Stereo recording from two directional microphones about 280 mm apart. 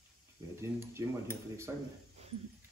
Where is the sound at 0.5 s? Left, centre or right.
Centre.